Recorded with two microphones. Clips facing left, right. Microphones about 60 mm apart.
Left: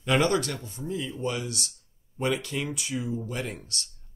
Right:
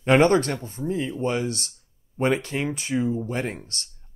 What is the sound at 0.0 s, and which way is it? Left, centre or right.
Speech, right.